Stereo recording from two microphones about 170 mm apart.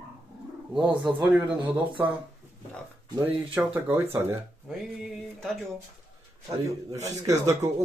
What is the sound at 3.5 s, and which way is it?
Speech, 10° right (ahead or behind).